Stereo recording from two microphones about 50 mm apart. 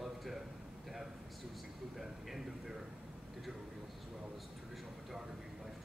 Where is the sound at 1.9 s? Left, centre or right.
Centre.